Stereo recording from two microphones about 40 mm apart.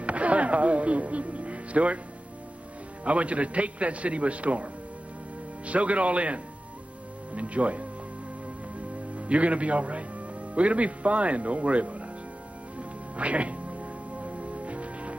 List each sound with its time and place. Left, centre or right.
0.0 s music: right
3.0 s a man's voice: right
5.7 s a man's voice: right
9.1 s a man's voice: right
12.7 s music: right